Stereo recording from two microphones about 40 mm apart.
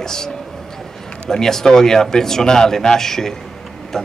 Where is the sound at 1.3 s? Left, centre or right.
Centre.